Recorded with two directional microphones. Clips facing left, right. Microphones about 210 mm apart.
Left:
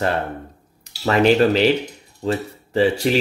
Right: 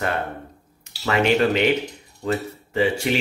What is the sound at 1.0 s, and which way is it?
Speech, 35° left (ahead or behind).